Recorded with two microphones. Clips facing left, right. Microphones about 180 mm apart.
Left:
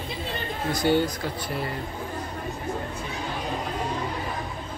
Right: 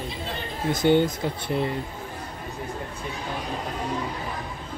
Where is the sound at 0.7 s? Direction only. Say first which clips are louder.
Right 3 dB; 20° right (ahead or behind).